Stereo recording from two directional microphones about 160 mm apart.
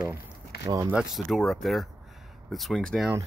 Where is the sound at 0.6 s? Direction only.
20° right (ahead or behind).